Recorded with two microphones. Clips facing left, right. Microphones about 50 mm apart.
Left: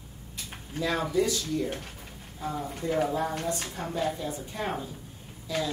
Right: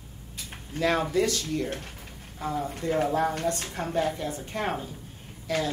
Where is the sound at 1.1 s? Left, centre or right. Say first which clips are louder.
Right 1 dB; right.